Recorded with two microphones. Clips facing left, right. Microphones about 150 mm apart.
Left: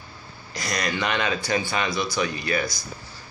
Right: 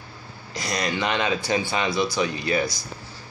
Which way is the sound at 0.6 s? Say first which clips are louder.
Right 1 dB; 25° right (ahead or behind).